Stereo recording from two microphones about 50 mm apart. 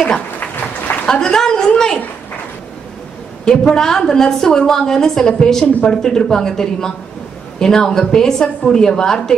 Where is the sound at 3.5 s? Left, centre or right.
Centre.